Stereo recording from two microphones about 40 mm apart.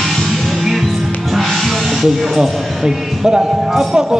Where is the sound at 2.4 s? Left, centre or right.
Centre.